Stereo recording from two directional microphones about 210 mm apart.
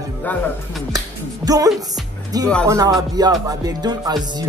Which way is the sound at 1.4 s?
15° right (ahead or behind).